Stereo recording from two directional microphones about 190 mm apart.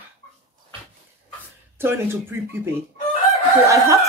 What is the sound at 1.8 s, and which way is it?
Speech, 10° right (ahead or behind).